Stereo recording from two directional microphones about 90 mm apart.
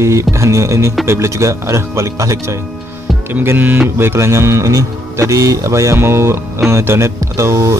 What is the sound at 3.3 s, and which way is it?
A man's voice, 20° right (ahead or behind).